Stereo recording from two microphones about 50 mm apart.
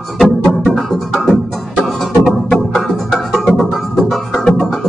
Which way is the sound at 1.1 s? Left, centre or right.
Centre.